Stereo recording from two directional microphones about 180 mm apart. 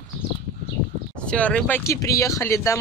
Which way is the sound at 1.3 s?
5° left (ahead or behind).